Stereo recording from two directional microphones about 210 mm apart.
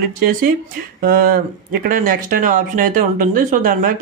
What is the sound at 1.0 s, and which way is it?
Speech, 45° right (ahead or behind).